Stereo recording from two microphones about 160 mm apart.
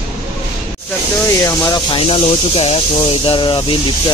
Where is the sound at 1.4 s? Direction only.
25° left (ahead or behind).